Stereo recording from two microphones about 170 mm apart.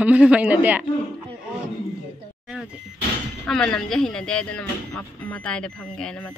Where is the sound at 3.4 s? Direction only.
5° left (ahead or behind).